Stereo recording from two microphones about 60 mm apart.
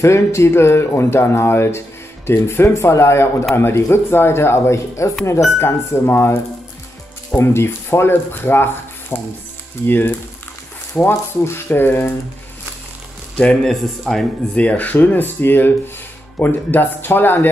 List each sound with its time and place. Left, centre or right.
0.0 s speech: left
7.3 s speech: left
13.7 s speech: centre
14.5 s speech: left